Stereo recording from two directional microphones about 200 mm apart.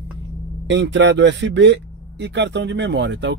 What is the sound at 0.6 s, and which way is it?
Speech, 70° right (ahead or behind).